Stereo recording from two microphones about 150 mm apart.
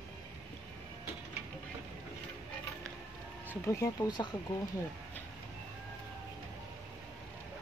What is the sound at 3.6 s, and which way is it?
Speech, 20° left (ahead or behind).